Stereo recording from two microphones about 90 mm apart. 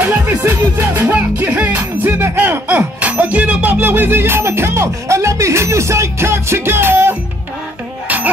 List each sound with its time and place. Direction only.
0.0 s music: 20° right (ahead or behind)
1.0 s music: 15° right (ahead or behind)